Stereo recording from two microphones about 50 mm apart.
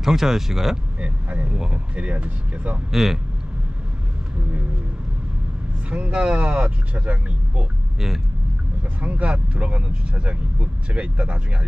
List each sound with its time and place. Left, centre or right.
0.0 s speech: centre
1.3 s speech: right
2.9 s speech: centre
5.9 s speech: right
9.0 s speech: right